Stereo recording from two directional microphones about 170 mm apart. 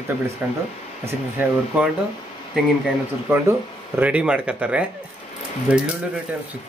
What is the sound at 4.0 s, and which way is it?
Speech, 5° right (ahead or behind).